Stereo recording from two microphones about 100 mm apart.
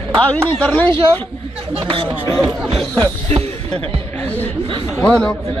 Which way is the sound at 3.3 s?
90° right.